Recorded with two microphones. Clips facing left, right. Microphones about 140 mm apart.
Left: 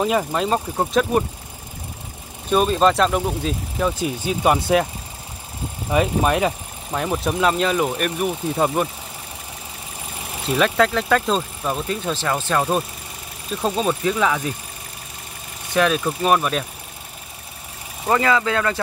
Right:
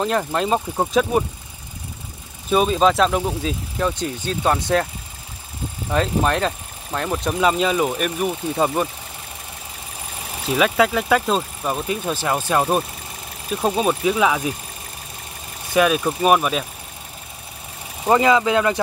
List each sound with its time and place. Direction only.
0.0 s speech: 5° left (ahead or behind)
2.5 s speech: centre (ahead or behind)
5.9 s speech: 10° left (ahead or behind)
10.4 s speech: 5° right (ahead or behind)
15.7 s speech: 5° right (ahead or behind)
18.0 s speech: 20° right (ahead or behind)